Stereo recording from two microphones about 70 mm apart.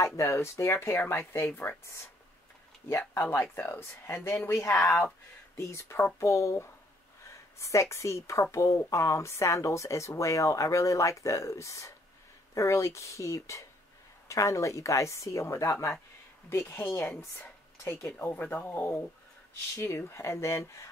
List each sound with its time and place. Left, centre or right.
0.0 s a woman's voice: left
19.7 s speech: left